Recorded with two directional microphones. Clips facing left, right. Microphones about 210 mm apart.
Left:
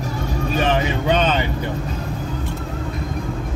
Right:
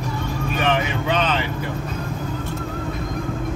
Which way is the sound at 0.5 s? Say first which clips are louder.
Left 2 dB; 30° left (ahead or behind).